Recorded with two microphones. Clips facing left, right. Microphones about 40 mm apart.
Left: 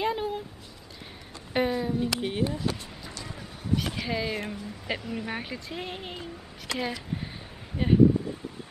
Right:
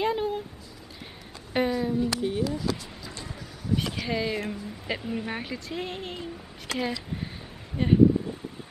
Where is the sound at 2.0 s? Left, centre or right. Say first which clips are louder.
Right 2 dB; left.